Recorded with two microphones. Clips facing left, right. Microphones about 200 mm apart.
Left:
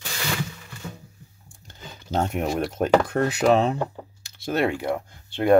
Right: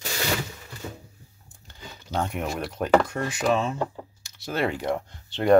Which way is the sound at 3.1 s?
60° left (ahead or behind).